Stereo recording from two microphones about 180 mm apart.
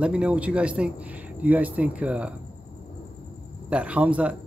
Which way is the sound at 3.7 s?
5° right (ahead or behind).